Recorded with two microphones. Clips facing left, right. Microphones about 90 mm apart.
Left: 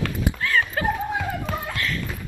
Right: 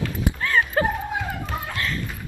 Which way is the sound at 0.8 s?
35° right (ahead or behind).